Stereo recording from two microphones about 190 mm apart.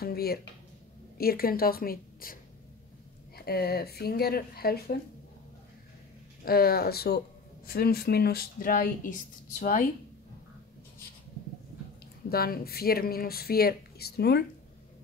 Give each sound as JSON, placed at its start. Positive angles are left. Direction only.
{"t": 0.0, "sound": "speech", "side_deg": 55}
{"t": 3.3, "sound": "speech", "side_deg": 55}
{"t": 6.4, "sound": "speech", "side_deg": 55}
{"t": 12.3, "sound": "speech", "side_deg": 55}